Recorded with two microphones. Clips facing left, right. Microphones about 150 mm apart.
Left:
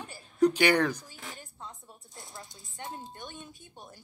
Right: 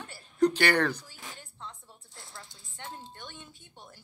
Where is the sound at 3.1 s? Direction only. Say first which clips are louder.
Left 2 dB; 20° left (ahead or behind).